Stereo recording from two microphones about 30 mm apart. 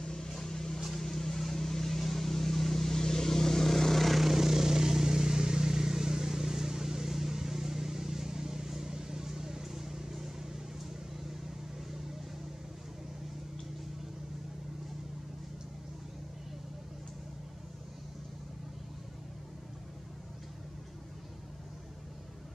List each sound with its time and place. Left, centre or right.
0.0 s vehicle: centre
4.3 s vehicle: centre